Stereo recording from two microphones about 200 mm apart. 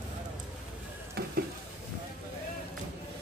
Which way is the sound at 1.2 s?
50° right (ahead or behind).